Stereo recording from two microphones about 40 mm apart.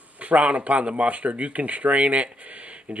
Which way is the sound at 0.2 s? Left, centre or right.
Right.